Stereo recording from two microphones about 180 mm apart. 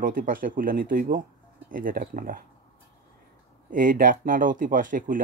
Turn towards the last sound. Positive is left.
turn(degrees=-45)  # may be behind; listen again after turning